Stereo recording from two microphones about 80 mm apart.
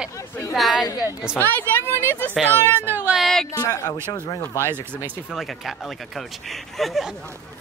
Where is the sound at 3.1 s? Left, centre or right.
Centre.